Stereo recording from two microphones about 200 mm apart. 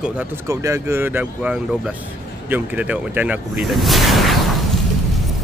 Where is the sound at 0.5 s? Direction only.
15° right (ahead or behind).